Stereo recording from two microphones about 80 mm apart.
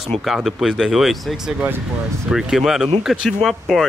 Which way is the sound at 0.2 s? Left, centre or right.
Centre.